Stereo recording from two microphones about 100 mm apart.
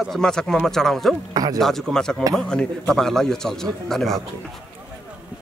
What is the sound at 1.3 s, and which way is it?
Speech, 40° right (ahead or behind).